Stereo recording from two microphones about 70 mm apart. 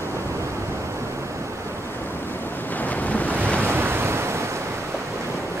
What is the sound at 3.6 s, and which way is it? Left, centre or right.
Waves, right.